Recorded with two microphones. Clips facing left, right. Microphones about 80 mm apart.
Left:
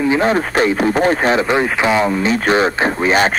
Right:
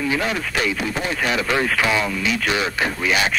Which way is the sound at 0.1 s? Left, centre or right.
Left.